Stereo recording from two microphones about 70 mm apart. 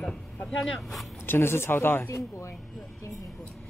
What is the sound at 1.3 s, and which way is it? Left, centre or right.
Speech, left.